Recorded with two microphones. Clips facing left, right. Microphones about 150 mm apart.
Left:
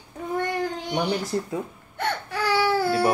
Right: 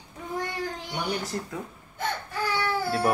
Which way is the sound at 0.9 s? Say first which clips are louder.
Left 6 dB; 30° left (ahead or behind).